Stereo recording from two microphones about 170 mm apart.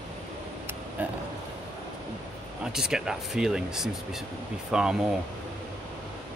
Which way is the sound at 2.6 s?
5° right (ahead or behind).